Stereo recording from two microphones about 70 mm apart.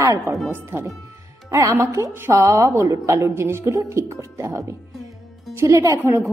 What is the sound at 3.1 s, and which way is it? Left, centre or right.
A woman's voice, right.